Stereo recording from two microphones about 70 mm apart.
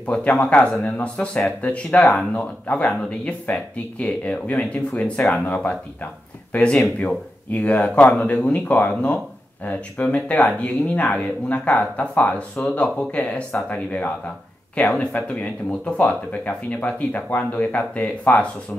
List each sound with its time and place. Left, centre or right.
0.0 s speech: centre
14.8 s speech: centre